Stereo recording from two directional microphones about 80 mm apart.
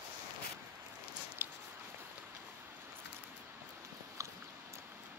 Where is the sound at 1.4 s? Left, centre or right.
Right.